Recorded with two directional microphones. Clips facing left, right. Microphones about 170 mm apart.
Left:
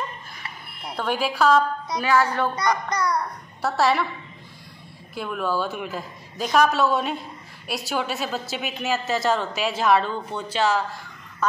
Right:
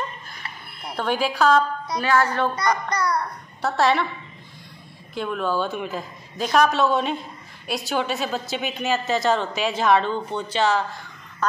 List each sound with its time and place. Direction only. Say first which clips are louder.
0.9 s a child's voice: right 1 dB; centre (ahead or behind); by 3.2 s 20° left (ahead or behind)
3.6 s speech: right 1 dB; 5° left (ahead or behind)
5.1 s speech: right 1 dB; 5° left (ahead or behind)